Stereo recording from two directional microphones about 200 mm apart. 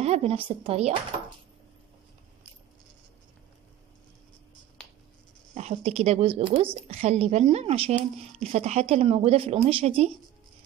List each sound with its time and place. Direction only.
0.0 s a woman's voice: 30° right (ahead or behind)
5.5 s a woman's voice: 35° right (ahead or behind)